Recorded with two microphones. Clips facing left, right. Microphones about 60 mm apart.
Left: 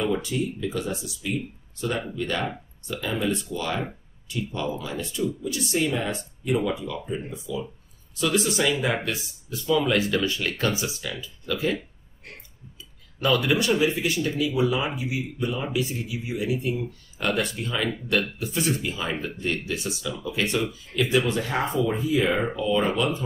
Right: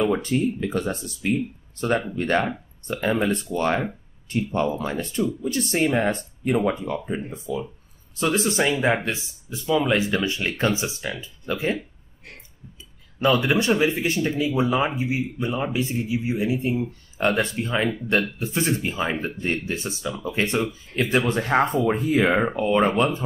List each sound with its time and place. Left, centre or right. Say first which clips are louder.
0.0 s speech: right 4 dB; right
13.2 s speech: right 2 dB; right